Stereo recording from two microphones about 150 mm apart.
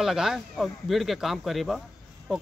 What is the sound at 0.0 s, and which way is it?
Speech, 5° right (ahead or behind).